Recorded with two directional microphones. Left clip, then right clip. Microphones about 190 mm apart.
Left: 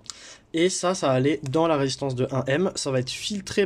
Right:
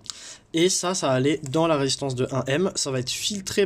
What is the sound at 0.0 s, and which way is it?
Speech, centre (ahead or behind).